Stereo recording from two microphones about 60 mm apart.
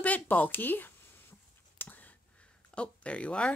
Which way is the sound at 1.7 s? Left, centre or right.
Left.